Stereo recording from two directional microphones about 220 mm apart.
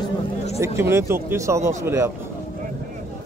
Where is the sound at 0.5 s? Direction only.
10° right (ahead or behind).